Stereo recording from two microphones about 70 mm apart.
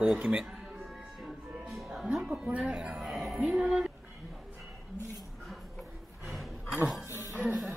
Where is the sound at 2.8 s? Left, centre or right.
Centre.